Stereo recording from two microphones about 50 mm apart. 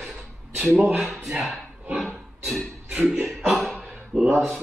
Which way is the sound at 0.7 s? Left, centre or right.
Right.